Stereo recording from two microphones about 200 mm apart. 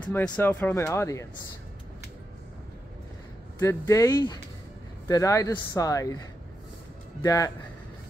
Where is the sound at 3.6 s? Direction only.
15° left (ahead or behind).